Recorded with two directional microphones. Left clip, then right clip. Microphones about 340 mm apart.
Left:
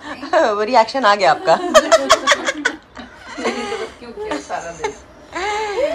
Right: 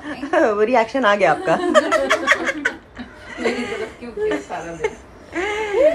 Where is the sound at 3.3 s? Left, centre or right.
Centre.